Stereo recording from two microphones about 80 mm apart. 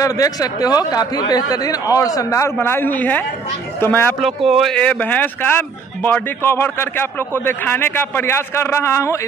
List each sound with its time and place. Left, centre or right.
0.0 s speech: left
2.6 s a man's voice: left
4.5 s speech: centre
4.7 s a man's voice: centre; by 9.2 s left